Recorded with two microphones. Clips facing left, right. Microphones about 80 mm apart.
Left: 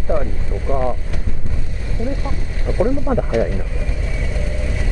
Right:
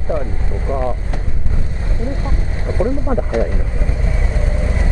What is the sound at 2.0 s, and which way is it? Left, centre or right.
Vehicle, right.